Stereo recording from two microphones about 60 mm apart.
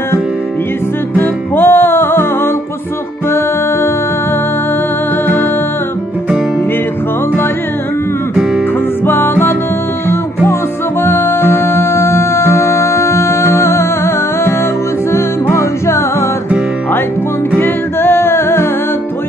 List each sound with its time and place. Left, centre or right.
1.1 s music: left
9.0 s music: left
11.0 s music: left
15.5 s music: left
17.6 s music: left